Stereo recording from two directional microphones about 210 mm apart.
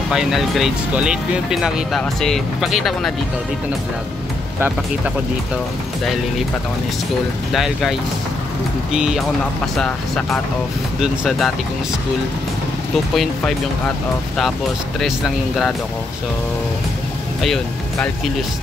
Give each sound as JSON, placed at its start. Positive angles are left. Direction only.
{"t": 0.1, "sound": "speech", "side_deg": 0}
{"t": 7.5, "sound": "speech", "side_deg": 0}
{"t": 8.9, "sound": "speech", "side_deg": -5}
{"t": 11.0, "sound": "speech", "side_deg": 0}
{"t": 13.1, "sound": "speech", "side_deg": 0}
{"t": 15.0, "sound": "speech", "side_deg": 0}